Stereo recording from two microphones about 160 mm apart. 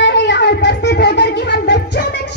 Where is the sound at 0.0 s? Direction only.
90° left.